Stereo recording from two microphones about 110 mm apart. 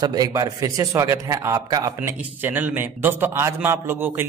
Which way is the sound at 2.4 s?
15° right (ahead or behind).